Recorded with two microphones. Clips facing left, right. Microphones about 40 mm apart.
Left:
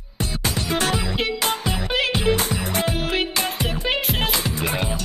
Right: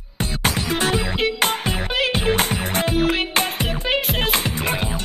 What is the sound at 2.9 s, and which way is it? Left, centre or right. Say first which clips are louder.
Music: right 4 dB; centre.